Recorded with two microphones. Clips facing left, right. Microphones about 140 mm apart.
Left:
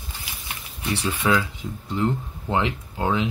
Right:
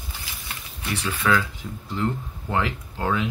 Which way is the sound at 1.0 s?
15° left (ahead or behind).